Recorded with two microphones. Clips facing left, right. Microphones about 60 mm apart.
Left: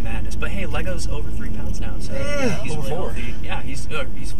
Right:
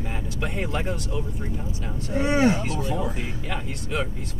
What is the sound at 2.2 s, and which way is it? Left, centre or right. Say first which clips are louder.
Speech: right 4 dB; right.